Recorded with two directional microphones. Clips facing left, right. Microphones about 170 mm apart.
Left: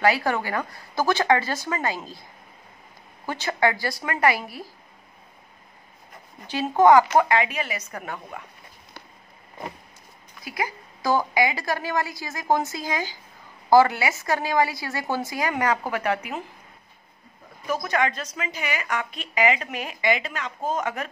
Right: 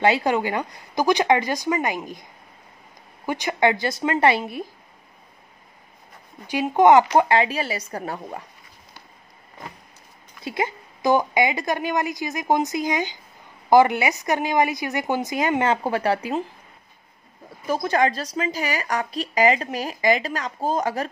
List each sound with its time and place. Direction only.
0.0 s a woman's voice: 20° right (ahead or behind)
3.3 s a woman's voice: 15° right (ahead or behind)
6.4 s a woman's voice: 10° right (ahead or behind); by 8.5 s 35° right (ahead or behind)
10.4 s a woman's voice: 25° right (ahead or behind)
17.6 s a woman's voice: 30° right (ahead or behind)